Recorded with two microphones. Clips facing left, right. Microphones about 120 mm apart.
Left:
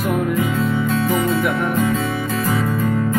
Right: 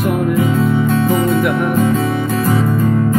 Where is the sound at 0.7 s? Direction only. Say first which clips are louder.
Right 4 dB; 25° right (ahead or behind).